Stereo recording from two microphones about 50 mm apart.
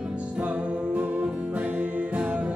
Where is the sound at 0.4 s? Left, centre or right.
Right.